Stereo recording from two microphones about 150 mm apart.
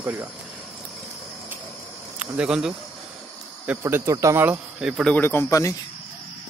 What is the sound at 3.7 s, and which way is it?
Speech, 15° right (ahead or behind).